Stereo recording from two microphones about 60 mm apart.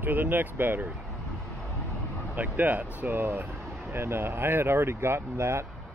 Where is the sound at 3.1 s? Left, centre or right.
Right.